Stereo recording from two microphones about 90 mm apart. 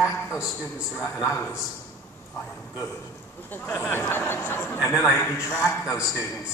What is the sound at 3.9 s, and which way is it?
Speech, 25° left (ahead or behind).